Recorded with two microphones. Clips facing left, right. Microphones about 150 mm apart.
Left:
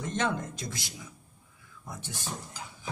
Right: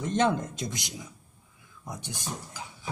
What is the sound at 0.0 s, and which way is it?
Speech, 25° right (ahead or behind).